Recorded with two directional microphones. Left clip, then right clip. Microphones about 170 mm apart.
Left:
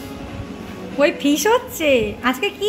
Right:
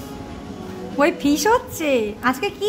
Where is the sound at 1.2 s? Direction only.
5° left (ahead or behind).